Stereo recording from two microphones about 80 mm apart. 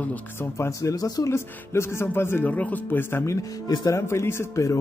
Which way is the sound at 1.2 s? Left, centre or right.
Left.